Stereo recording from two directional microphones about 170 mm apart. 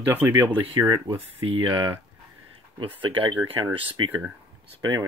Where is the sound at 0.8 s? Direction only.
25° right (ahead or behind).